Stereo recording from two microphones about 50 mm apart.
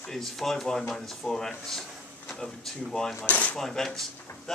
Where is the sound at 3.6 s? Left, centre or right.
Centre.